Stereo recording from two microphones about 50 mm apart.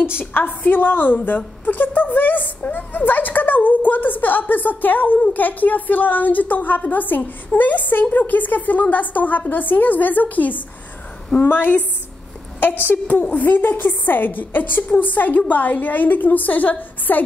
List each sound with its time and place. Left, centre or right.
0.2 s a woman's voice: left
11.4 s a woman's voice: left
12.8 s a woman's voice: left